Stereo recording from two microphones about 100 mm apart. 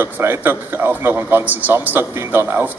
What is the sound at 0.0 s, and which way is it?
Speech, 20° right (ahead or behind).